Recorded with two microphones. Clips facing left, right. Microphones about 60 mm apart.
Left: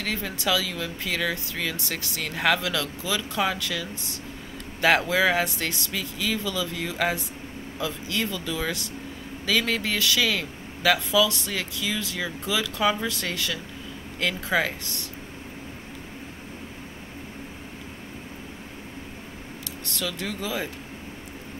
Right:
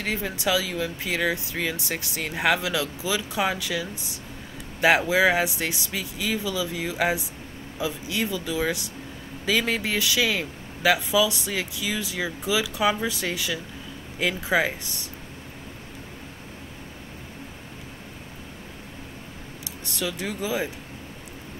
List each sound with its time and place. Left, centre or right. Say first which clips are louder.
0.0 s speech: right 2 dB; centre
20.0 s speech: right 2 dB; centre